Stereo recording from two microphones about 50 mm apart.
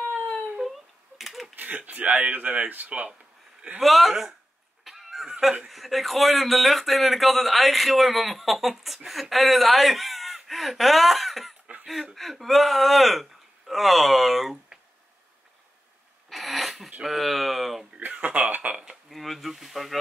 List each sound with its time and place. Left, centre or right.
0.6 s a sound: centre
1.9 s speech: right
3.8 s speech: centre
4.8 s honk: centre
5.7 s speech: centre
16.3 s sneeze: centre
17.0 s speech: centre
18.0 s speech: right
19.0 s speech: centre